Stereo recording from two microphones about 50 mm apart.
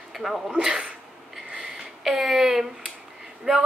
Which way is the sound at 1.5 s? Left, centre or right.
Centre.